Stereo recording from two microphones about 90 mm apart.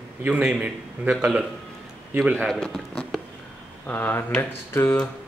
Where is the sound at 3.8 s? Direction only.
20° left (ahead or behind).